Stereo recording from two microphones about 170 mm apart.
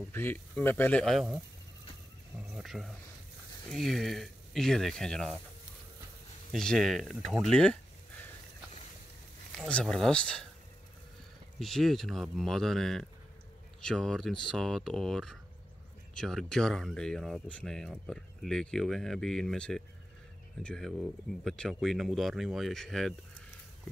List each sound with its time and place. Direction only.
0.1 s speech: 10° left (ahead or behind)
2.5 s speech: centre (ahead or behind)
6.5 s speech: 5° left (ahead or behind)
9.6 s speech: 5° left (ahead or behind)
11.6 s speech: centre (ahead or behind)